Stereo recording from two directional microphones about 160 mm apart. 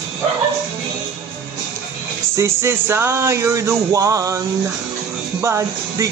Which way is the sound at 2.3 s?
15° right (ahead or behind).